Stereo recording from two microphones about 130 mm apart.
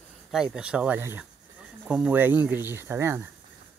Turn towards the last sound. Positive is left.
turn(degrees=-20)  # may be behind; listen again after turning